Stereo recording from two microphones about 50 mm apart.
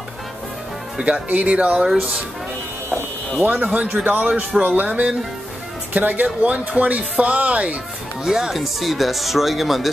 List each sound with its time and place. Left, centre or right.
1.0 s speech: right
3.4 s speech: right
4.3 s speech: right
6.2 s speech: right
8.2 s speech: centre